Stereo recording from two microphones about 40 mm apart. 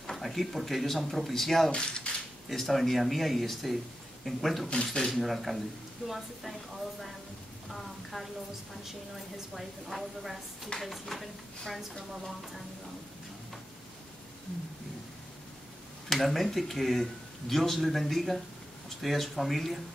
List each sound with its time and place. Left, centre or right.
0.1 s speech: centre
1.7 s speech: left
2.5 s speech: centre
7.7 s speech: centre
9.6 s speech: centre
16.1 s speech: centre